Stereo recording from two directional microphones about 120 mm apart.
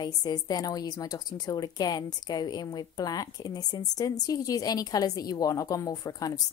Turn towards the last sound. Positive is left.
turn(degrees=30)  # may be behind; listen again after turning